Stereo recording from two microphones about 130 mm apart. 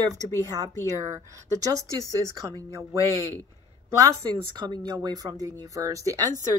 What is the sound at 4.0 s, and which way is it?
Speech, 30° right (ahead or behind).